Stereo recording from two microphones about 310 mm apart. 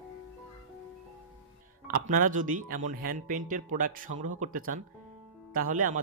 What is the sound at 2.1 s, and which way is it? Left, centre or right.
Speech, right.